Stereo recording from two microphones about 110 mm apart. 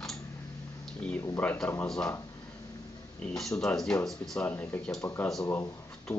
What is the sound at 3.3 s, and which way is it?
Speech, 5° left (ahead or behind).